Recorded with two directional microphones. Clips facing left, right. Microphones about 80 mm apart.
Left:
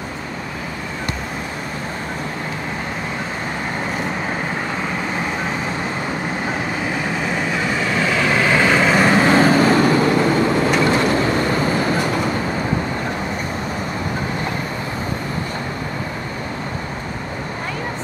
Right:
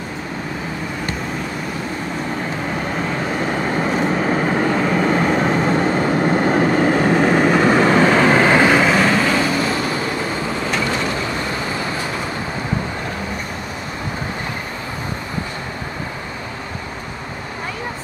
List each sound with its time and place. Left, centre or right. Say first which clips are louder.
5.0 s vehicle: right 7 dB; right
8.0 s vehicle: right 5 dB; right
8.6 s vehicle: right 1 dB; centre
9.1 s vehicle: left 4 dB; left